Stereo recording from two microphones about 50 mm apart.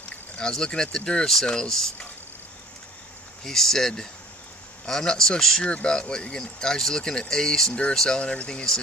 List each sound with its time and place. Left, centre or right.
0.4 s speech: centre
3.4 s speech: centre
8.2 s speech: left